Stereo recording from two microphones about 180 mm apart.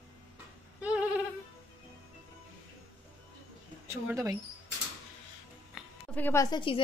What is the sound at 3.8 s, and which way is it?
Speech, 15° right (ahead or behind).